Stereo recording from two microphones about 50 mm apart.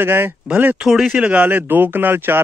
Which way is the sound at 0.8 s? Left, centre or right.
Centre.